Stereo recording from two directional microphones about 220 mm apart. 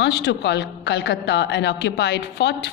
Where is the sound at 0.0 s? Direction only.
50° left (ahead or behind).